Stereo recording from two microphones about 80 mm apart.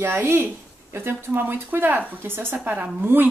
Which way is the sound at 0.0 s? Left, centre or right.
Right.